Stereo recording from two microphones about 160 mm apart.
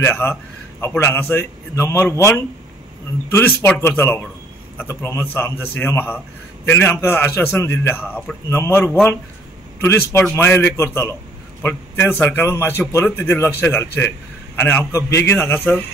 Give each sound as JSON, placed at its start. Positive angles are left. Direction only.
{"t": 0.0, "sound": "a man's voice", "side_deg": 15}